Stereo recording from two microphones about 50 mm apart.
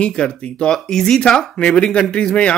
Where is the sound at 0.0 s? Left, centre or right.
Centre.